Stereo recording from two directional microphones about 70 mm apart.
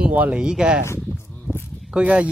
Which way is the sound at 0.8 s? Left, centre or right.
Left.